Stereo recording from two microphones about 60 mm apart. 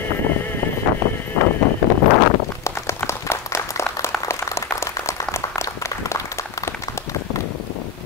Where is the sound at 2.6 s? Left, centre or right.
Left.